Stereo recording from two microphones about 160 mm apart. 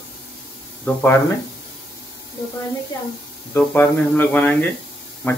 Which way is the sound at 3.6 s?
10° left (ahead or behind).